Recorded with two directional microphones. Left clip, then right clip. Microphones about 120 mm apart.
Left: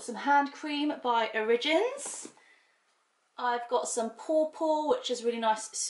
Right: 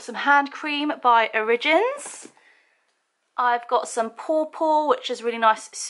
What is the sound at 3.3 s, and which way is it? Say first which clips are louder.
Speech: right 9 dB; 25° right (ahead or behind).